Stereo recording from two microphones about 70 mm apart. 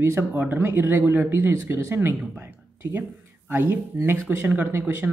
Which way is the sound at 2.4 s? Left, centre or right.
Right.